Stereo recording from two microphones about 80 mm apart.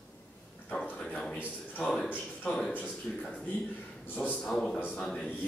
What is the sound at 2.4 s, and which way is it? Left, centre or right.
Speech, centre.